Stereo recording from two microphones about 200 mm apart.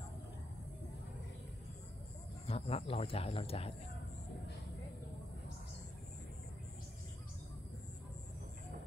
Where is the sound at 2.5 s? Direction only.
30° left (ahead or behind).